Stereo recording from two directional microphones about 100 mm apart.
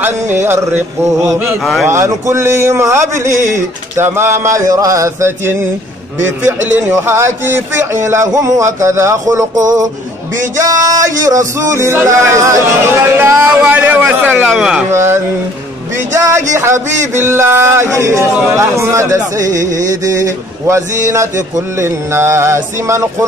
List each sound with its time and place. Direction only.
0.0 s speech: 20° right (ahead or behind)
1.6 s speech: centre (ahead or behind)
1.9 s speech: 30° right (ahead or behind)
10.4 s music: 35° right (ahead or behind)
12.3 s a man's voice: 30° right (ahead or behind); by 14.9 s 5° right (ahead or behind)
14.9 s speech: 25° right (ahead or behind)